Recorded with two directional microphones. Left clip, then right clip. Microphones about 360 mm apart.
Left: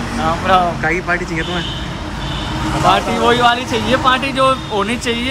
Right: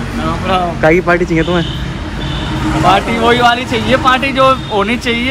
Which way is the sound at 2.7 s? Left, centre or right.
Centre.